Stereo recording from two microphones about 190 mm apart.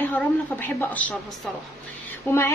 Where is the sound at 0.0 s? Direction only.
10° left (ahead or behind).